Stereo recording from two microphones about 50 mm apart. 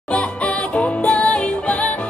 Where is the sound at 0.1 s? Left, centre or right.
Left.